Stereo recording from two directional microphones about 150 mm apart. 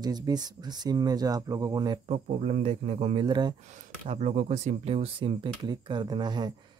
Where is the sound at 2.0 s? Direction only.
45° right (ahead or behind).